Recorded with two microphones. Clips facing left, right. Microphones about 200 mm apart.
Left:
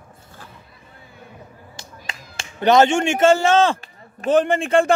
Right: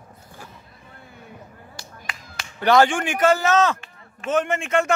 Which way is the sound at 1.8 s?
25° left (ahead or behind).